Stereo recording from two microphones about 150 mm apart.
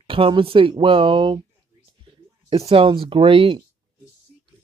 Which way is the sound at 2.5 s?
40° right (ahead or behind).